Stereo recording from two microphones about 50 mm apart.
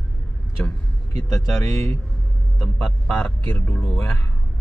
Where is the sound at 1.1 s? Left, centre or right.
Left.